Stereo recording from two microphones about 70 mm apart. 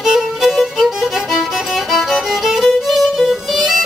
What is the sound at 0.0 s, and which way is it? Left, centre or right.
Music, centre.